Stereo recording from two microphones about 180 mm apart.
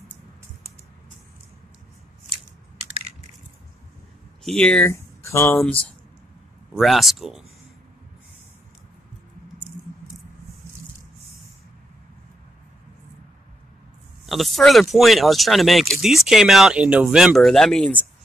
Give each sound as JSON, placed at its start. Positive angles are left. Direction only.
{"t": 4.4, "sound": "speech", "side_deg": 5}
{"t": 14.2, "sound": "speech", "side_deg": 0}